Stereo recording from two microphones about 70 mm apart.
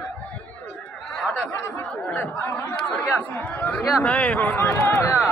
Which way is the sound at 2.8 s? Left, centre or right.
Centre.